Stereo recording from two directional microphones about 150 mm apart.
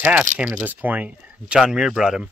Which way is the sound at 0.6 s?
10° right (ahead or behind).